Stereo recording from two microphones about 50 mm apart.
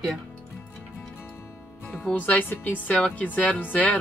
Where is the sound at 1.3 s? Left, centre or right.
Left.